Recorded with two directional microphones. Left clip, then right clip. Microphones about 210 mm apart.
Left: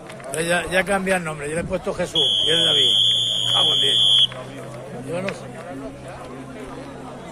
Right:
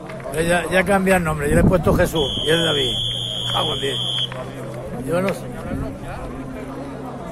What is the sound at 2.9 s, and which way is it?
Speech, 50° left (ahead or behind).